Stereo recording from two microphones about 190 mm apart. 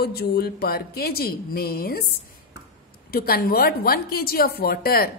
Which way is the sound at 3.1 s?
50° left (ahead or behind).